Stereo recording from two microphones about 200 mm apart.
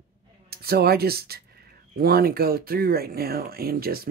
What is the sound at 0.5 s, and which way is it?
Speech, 50° right (ahead or behind).